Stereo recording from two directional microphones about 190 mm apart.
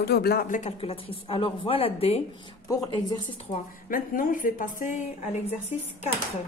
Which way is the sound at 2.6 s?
20° left (ahead or behind).